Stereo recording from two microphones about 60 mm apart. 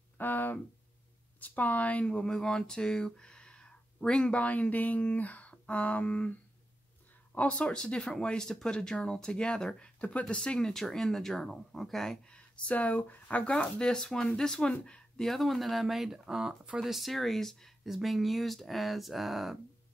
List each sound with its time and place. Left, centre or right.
0.2 s a sound: left
1.4 s speech: left
7.3 s speech: centre
12.6 s speech: left
15.2 s speech: centre